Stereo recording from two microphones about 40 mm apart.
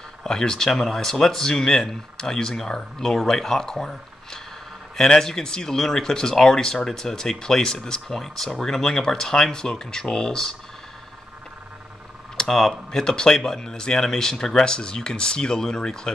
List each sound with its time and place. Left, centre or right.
0.2 s speech: centre
12.4 s speech: centre